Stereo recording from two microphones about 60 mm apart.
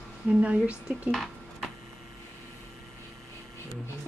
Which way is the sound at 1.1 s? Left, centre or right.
Centre.